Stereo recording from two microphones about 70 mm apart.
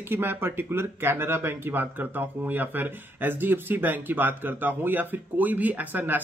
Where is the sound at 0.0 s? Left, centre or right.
Right.